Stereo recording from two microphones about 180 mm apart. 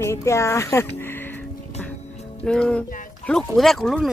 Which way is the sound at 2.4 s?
5° left (ahead or behind).